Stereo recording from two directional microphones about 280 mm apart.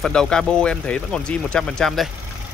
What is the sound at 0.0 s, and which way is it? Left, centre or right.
Speech, centre.